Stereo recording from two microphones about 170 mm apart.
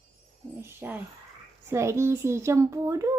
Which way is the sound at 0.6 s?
15° right (ahead or behind).